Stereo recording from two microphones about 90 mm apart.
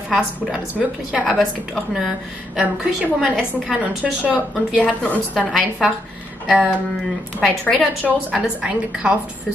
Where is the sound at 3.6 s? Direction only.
5° right (ahead or behind).